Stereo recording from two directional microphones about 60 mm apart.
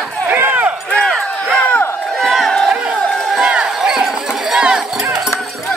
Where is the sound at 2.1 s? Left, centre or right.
Centre.